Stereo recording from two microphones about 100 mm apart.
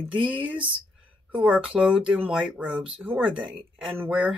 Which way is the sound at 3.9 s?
25° right (ahead or behind).